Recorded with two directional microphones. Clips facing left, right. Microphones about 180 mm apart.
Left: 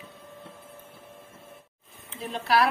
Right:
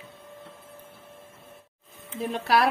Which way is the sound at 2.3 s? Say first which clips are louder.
Even; 50° right (ahead or behind).